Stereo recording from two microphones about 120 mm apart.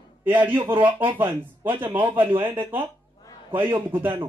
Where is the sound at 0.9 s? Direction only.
45° right (ahead or behind).